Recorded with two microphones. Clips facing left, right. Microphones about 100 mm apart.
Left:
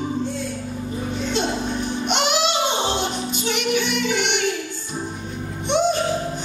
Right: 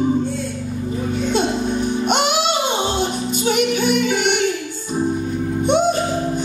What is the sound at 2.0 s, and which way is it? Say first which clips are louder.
Music: right 1 dB; 45° right (ahead or behind).